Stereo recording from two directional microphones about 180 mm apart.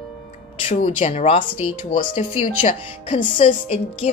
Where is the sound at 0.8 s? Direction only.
35° left (ahead or behind).